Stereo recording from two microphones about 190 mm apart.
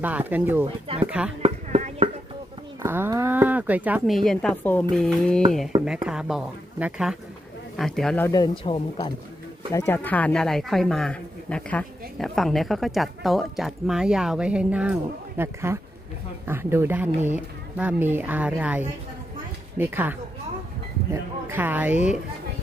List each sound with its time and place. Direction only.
0.0 s a woman's voice: 10° right (ahead or behind)
0.7 s speech: 30° right (ahead or behind)
1.0 s a woman's voice: 5° right (ahead or behind)
1.4 s a sound: 35° right (ahead or behind)
2.8 s a woman's voice: 10° right (ahead or behind)
4.2 s speech: 5° left (ahead or behind)
5.7 s a sound: 25° right (ahead or behind)
6.0 s speech: 5° right (ahead or behind)
8.3 s a woman's voice: 20° left (ahead or behind); by 22.1 s 10° right (ahead or behind)